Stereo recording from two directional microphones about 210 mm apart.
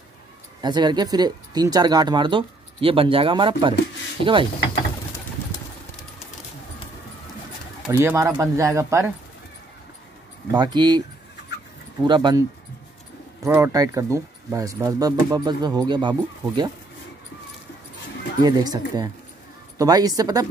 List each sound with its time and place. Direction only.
0.6 s speech: 20° right (ahead or behind)
7.9 s speech: 10° right (ahead or behind)
10.5 s speech: 20° right (ahead or behind)
18.4 s speech: 20° right (ahead or behind)
19.8 s speech: 20° right (ahead or behind)